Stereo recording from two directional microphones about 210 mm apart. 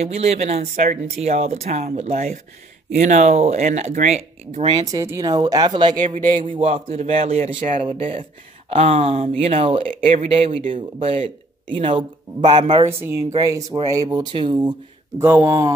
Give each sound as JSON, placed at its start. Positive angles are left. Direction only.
{"t": 0.0, "sound": "speech", "side_deg": -30}
{"t": 6.0, "sound": "a man's voice", "side_deg": -35}